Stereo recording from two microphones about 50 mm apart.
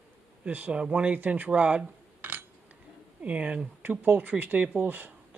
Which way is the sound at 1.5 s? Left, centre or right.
Right.